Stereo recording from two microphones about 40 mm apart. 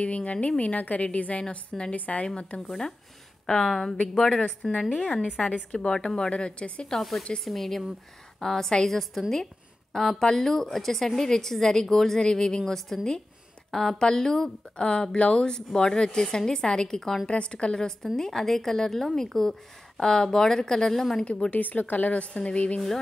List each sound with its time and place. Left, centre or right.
0.0 s a woman's voice: left
2.2 s a woman's voice: left; by 4.4 s centre
4.9 s a woman's voice: left
7.0 s a woman's voice: centre
15.1 s a woman's voice: left
15.5 s a woman's voice: centre
17.3 s a woman's voice: left; by 21.2 s centre
21.2 s a woman's voice: left
21.5 s a woman's voice: left